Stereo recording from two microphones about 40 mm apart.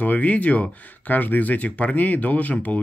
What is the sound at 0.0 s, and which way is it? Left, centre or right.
Speech, left.